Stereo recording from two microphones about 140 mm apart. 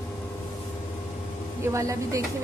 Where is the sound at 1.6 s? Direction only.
20° right (ahead or behind).